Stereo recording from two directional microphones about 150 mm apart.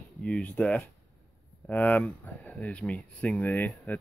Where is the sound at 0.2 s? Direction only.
5° left (ahead or behind).